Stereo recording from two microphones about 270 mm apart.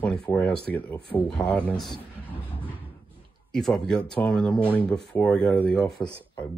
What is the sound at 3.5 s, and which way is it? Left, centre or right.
Speech, centre.